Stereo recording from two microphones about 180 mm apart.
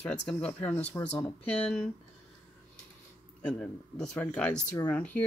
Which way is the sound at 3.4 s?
5° left (ahead or behind).